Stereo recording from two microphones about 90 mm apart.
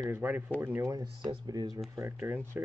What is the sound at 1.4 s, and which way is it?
Speech, 45° right (ahead or behind).